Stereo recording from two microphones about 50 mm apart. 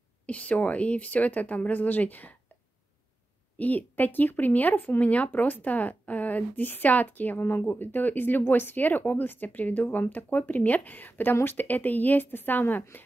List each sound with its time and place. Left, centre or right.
0.3 s speech: left
3.5 s speech: left